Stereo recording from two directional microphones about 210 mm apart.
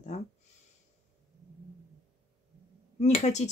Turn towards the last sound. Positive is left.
turn(degrees=30)  # may be behind; listen again after turning